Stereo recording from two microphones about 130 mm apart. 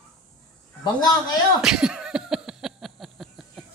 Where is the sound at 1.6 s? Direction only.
5° right (ahead or behind).